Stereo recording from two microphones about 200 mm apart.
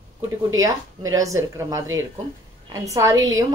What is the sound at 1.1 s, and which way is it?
A woman's voice, 15° right (ahead or behind).